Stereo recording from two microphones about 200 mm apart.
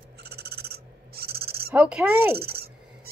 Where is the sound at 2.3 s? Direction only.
50° right (ahead or behind).